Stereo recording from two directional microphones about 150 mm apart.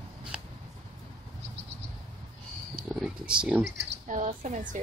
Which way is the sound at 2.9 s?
5° right (ahead or behind).